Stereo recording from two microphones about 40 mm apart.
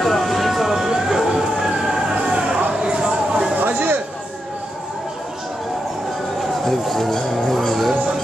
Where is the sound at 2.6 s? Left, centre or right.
Right.